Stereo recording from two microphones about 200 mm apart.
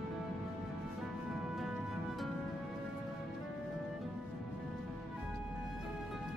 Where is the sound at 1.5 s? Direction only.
Centre (ahead or behind).